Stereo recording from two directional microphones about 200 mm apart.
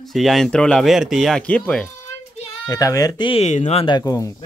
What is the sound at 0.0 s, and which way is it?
Speech, centre (ahead or behind).